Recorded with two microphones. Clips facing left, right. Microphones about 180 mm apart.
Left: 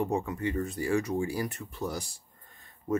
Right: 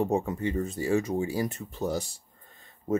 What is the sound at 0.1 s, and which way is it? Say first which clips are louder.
Speech: right 3 dB; 25° right (ahead or behind).